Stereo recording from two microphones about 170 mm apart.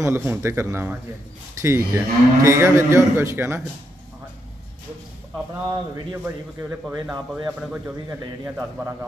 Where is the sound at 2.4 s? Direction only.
15° right (ahead or behind).